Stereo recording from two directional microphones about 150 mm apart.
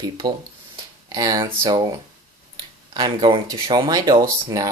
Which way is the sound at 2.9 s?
30° right (ahead or behind).